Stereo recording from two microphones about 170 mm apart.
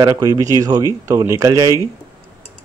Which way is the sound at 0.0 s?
20° right (ahead or behind).